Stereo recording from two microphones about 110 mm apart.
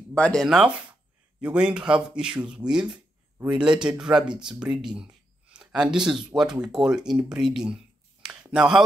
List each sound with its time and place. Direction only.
0.1 s speech: 5° left (ahead or behind)
0.5 s speech: 5° right (ahead or behind)